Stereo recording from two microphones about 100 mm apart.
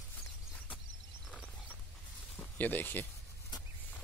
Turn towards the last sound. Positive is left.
turn(degrees=20)  # may be behind; listen again after turning